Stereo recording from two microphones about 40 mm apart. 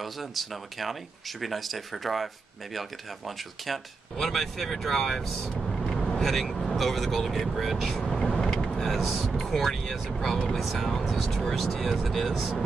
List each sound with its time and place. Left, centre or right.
0.0 s speech: centre
5.6 s vehicle: centre
5.9 s vehicle: centre
6.2 s speech: centre
8.3 s vehicle: centre
8.6 s speech: centre